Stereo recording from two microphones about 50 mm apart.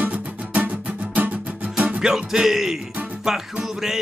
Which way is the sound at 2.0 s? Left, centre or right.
Centre.